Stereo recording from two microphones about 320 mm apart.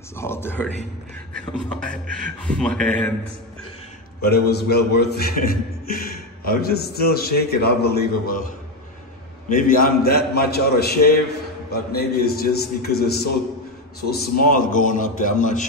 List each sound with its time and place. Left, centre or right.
0.1 s speech: centre
2.4 s speech: centre
4.2 s a man's voice: left
9.5 s a man's voice: left